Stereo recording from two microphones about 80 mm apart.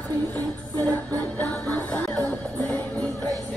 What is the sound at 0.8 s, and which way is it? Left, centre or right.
Music, centre.